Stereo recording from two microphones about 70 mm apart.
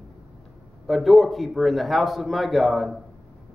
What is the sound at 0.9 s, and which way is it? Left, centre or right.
A man's voice, centre.